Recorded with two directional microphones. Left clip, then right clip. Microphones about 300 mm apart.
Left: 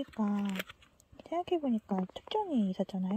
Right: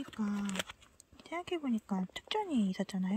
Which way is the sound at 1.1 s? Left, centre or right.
Centre.